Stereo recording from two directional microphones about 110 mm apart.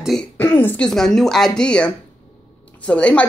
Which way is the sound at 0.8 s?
5° left (ahead or behind).